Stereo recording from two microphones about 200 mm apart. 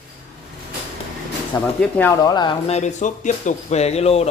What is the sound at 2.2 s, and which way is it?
Speech, 20° left (ahead or behind).